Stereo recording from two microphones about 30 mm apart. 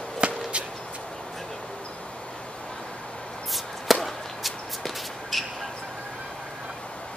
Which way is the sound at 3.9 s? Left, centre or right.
Centre.